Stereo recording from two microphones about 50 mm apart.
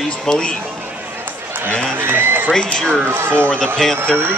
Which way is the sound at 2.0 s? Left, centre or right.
Right.